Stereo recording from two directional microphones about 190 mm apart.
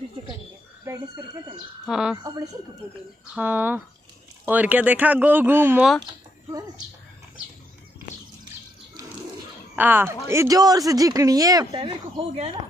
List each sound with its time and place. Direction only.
0.8 s speech: 20° right (ahead or behind)
1.9 s speech: 5° right (ahead or behind)
2.2 s speech: 20° right (ahead or behind)
9.8 s speech: 10° right (ahead or behind)
11.7 s speech: 30° right (ahead or behind)